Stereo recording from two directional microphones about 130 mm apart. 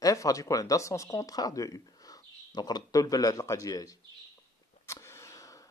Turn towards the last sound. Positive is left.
turn(degrees=20)  # may be behind; listen again after turning